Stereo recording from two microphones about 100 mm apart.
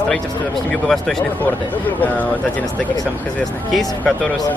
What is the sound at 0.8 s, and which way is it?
Speech, centre (ahead or behind).